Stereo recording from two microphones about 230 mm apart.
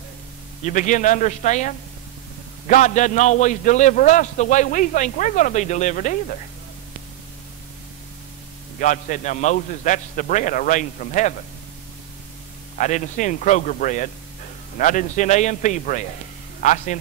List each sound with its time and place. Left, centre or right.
0.7 s a man's voice: left
8.7 s a man's voice: left
12.7 s a man's voice: left